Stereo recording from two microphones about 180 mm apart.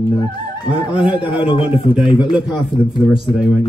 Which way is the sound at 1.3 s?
30° left (ahead or behind).